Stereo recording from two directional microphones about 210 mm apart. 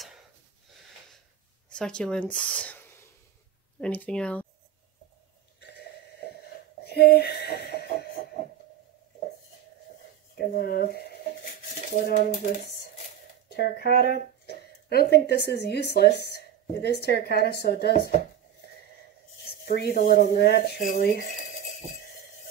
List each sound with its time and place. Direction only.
1.7 s speech: 5° left (ahead or behind)
5.6 s a sound: 50° left (ahead or behind)
6.8 s speech: 50° left (ahead or behind)
10.3 s dishes: 45° left (ahead or behind)
13.5 s speech: 50° left (ahead or behind)
19.6 s speech: 50° left (ahead or behind)
21.1 s speech: 45° right (ahead or behind)